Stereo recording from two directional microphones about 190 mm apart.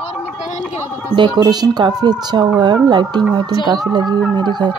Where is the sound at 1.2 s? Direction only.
25° right (ahead or behind).